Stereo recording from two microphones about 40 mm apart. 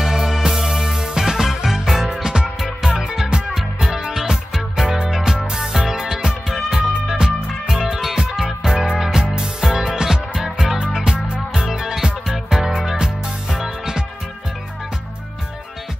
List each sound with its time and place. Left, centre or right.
0.0 s music: centre